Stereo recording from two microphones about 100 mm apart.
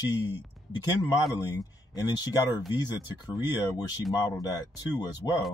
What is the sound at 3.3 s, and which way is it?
Speech, 40° left (ahead or behind).